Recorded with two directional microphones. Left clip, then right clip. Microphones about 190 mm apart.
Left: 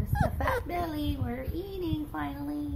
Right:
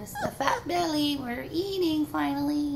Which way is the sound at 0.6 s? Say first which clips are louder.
Right 6 dB; 5° left (ahead or behind).